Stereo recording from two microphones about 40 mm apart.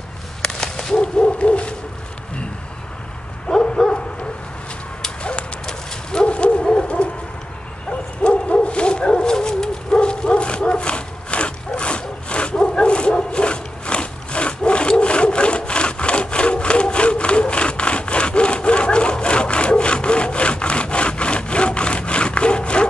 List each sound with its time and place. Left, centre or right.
0.4 s a sound: centre
0.9 s bow-wow: left
3.6 s bow-wow: left
6.2 s bow-wow: left
6.7 s bird: left
7.9 s bow-wow: left